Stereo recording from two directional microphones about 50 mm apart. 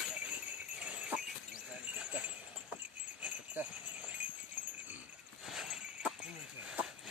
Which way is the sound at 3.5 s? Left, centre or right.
Right.